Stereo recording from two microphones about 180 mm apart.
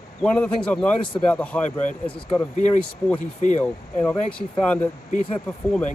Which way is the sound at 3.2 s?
45° left (ahead or behind).